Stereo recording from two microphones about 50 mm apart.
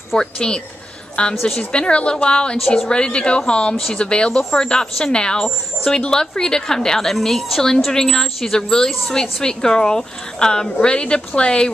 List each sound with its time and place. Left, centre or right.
0.2 s a woman's voice: centre
3.7 s a woman's voice: centre
4.0 s a woman's voice: centre
4.4 s a woman's voice: centre